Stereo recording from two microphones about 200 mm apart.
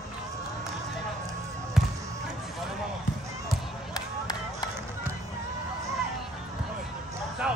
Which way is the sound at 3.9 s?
20° left (ahead or behind).